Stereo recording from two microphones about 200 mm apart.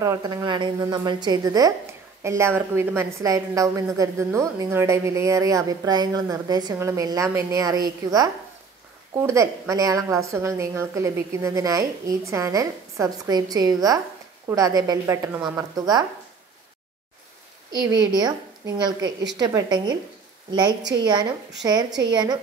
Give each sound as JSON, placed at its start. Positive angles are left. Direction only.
{"t": 0.0, "sound": "a woman's voice", "side_deg": -15}
{"t": 17.9, "sound": "a woman's voice", "side_deg": -20}
{"t": 21.0, "sound": "a woman's voice", "side_deg": -20}